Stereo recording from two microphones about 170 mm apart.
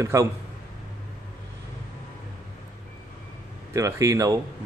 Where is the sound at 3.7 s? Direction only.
20° right (ahead or behind).